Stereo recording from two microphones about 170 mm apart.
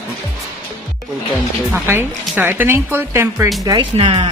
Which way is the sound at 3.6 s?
30° right (ahead or behind).